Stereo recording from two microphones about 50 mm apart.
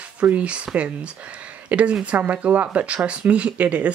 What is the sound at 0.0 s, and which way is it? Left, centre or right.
Speech, right.